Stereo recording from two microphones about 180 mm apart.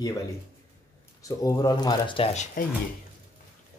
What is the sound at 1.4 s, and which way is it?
Speech, 20° left (ahead or behind).